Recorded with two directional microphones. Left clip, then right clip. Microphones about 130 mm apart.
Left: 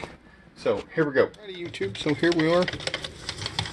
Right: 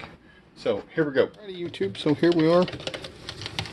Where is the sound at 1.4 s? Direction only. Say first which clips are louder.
Right 2 dB; 20° right (ahead or behind).